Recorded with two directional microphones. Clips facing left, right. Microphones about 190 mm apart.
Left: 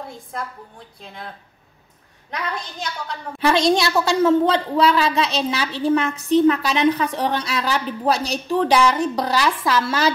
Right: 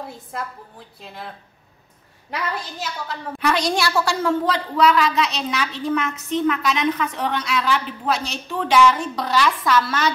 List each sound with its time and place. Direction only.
0.0 s a woman's voice: 5° right (ahead or behind)
2.3 s a woman's voice: 5° right (ahead or behind)
3.3 s a woman's voice: 25° left (ahead or behind)